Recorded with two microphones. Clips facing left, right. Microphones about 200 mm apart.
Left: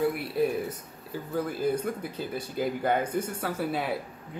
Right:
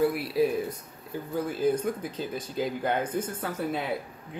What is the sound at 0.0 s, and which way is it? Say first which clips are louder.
Speech: right 2 dB; centre (ahead or behind).